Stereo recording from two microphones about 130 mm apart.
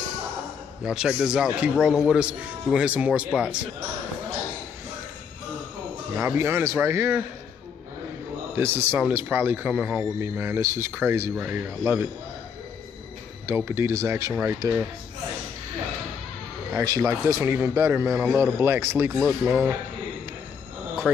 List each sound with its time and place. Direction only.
0.8 s a man's voice: 5° right (ahead or behind)
6.1 s a man's voice: 15° right (ahead or behind)
8.5 s a man's voice: 15° right (ahead or behind)
13.5 s a man's voice: 15° right (ahead or behind)
16.7 s a man's voice: 25° right (ahead or behind)